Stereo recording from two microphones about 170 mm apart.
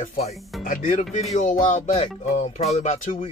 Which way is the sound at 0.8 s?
45° left (ahead or behind).